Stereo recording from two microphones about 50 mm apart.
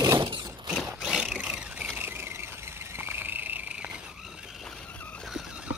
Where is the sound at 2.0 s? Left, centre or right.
Right.